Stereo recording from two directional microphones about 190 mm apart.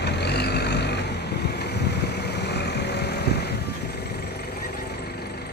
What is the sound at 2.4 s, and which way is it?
Vehicle, 60° left (ahead or behind).